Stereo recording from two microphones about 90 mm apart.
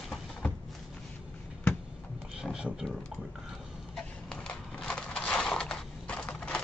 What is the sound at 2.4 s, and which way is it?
Speech, 5° right (ahead or behind).